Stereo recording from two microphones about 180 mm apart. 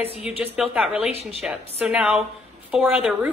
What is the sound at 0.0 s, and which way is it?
Speech, 35° left (ahead or behind).